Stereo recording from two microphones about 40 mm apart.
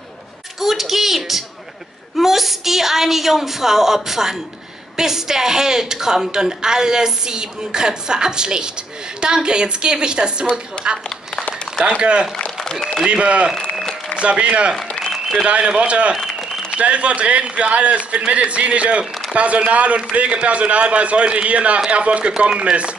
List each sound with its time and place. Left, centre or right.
0.6 s a woman's voice: centre; by 10.3 s right
10.8 s speech: left
11.8 s a woman's voice: right
15.0 s a sound: centre
15.4 s a woman's voice: right